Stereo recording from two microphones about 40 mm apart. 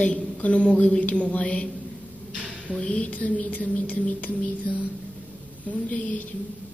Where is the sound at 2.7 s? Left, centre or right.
Left.